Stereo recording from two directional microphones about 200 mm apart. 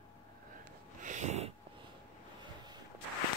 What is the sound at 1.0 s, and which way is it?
Snort, 35° right (ahead or behind).